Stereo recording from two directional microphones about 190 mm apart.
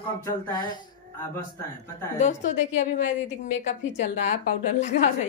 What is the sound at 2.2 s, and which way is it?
A woman's voice, 40° left (ahead or behind).